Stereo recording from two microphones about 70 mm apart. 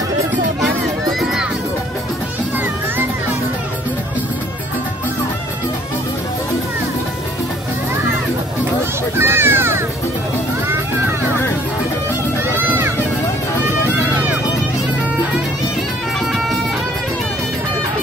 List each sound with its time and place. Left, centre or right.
9.2 s children playing: right
12.5 s run: right